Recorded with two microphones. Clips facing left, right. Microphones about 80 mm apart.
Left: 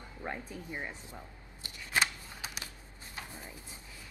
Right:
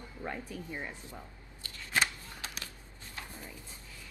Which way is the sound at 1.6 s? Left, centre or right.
Centre.